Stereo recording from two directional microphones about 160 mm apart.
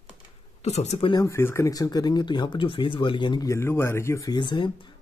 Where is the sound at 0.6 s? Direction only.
45° left (ahead or behind).